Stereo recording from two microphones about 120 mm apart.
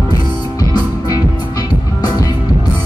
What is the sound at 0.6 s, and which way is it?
Music, 30° left (ahead or behind).